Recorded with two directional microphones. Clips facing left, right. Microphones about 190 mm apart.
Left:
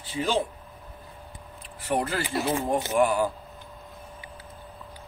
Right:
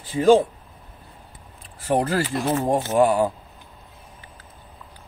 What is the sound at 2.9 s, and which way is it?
Speech, 30° right (ahead or behind).